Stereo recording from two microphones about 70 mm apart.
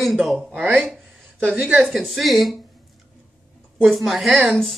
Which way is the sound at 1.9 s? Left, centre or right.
Centre.